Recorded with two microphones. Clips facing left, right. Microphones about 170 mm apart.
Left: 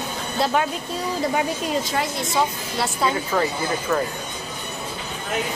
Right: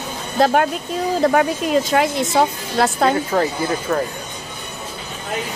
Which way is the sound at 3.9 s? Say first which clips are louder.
Right 1 dB; 35° right (ahead or behind).